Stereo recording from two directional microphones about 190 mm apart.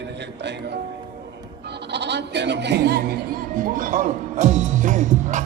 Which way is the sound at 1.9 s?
65° right (ahead or behind).